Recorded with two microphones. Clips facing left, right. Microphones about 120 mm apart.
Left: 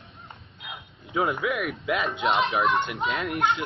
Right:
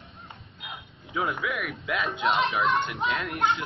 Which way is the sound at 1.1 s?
25° left (ahead or behind).